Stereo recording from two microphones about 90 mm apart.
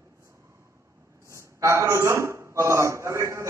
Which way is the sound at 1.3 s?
35° right (ahead or behind).